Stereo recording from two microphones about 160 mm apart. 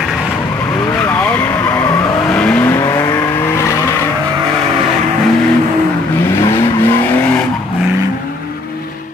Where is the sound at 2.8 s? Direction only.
25° left (ahead or behind).